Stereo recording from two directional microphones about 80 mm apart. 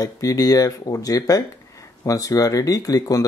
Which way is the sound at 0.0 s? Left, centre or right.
Left.